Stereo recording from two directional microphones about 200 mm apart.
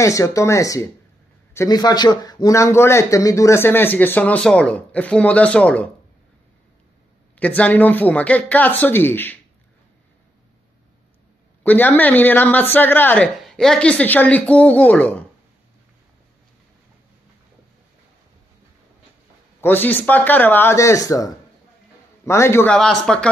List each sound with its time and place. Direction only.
0.0 s speech: 15° left (ahead or behind)
7.3 s speech: 5° left (ahead or behind)
11.6 s speech: 10° left (ahead or behind)
19.6 s speech: 10° left (ahead or behind)